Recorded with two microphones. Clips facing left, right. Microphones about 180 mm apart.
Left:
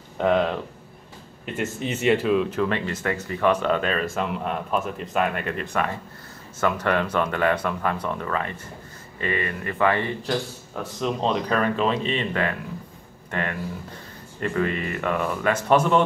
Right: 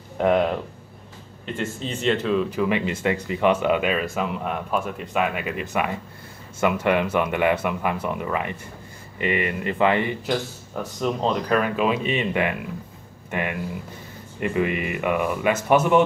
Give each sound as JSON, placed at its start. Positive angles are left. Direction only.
{"t": 0.2, "sound": "speech", "side_deg": -5}
{"t": 1.4, "sound": "speech", "side_deg": 10}
{"t": 2.7, "sound": "a man's voice", "side_deg": -10}
{"t": 10.8, "sound": "speech", "side_deg": -5}